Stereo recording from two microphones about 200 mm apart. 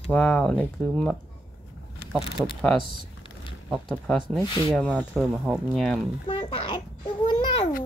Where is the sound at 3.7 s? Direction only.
Centre (ahead or behind).